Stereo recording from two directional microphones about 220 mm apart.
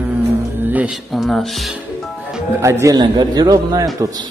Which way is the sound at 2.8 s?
20° right (ahead or behind).